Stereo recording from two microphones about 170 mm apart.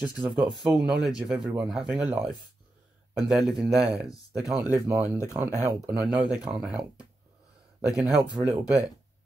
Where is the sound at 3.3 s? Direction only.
5° right (ahead or behind).